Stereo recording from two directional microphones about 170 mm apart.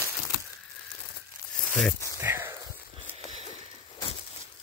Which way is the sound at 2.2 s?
15° right (ahead or behind).